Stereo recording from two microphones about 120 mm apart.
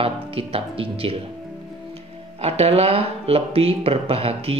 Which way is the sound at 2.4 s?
60° right (ahead or behind).